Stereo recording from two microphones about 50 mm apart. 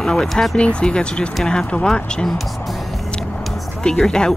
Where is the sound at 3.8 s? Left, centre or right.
Centre.